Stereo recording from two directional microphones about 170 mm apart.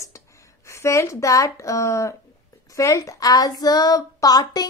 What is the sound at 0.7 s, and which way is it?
A woman's voice, 15° left (ahead or behind).